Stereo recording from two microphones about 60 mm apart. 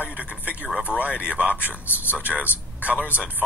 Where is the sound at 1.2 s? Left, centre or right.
Right.